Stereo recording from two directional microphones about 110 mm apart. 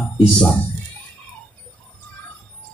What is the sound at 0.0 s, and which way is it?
Speech, 10° left (ahead or behind).